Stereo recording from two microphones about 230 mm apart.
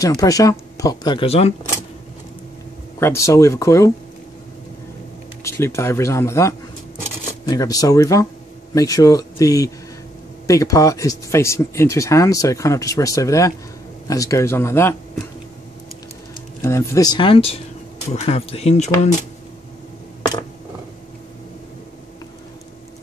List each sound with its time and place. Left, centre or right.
0.0 s speech: centre
3.0 s speech: centre
5.4 s speech: centre
16.6 s speech: centre; by 18.9 s left